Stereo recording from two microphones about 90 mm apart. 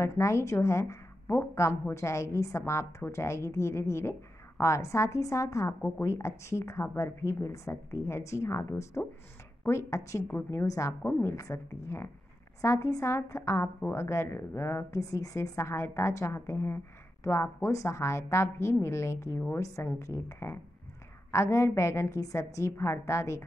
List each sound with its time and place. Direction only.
0.0 s a woman's voice: 30° left (ahead or behind)
5.8 s a woman's voice: 20° left (ahead or behind)
6.0 s a woman's voice: 30° left (ahead or behind)
10.2 s a woman's voice: 20° left (ahead or behind)
10.6 s a woman's voice: 35° left (ahead or behind)
11.0 s a woman's voice: 20° left (ahead or behind)
11.3 s a woman's voice: 35° left (ahead or behind)
15.0 s a woman's voice: 40° left (ahead or behind)